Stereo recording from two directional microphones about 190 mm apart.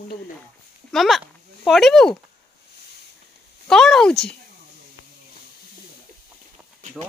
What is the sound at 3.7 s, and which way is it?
Speech, centre (ahead or behind).